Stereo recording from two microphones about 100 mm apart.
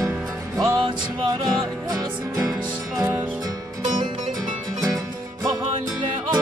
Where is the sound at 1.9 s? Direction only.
40° right (ahead or behind).